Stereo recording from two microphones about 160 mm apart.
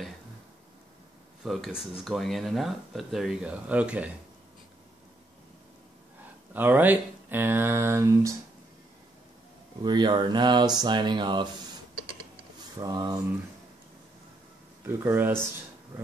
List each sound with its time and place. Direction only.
1.4 s speech: centre (ahead or behind)
6.5 s speech: 10° right (ahead or behind)
9.8 s mantra: 30° right (ahead or behind)
12.7 s mantra: 25° right (ahead or behind)
14.9 s speech: 15° right (ahead or behind)